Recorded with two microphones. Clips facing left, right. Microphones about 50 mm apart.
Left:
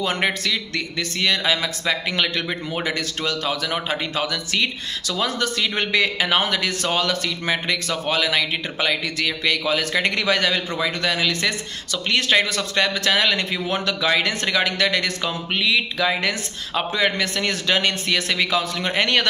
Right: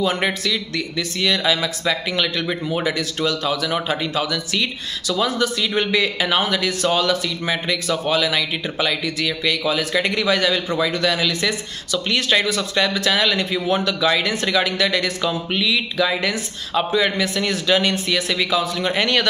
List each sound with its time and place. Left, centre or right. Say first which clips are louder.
0.0 s a man's voice: right 2 dB; left